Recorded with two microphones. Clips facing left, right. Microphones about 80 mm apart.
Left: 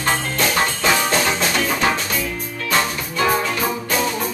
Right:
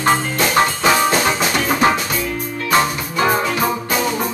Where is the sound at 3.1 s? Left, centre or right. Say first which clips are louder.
Right 2 dB; right.